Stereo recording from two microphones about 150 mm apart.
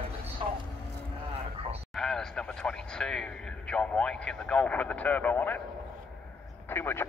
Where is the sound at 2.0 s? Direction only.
5° left (ahead or behind).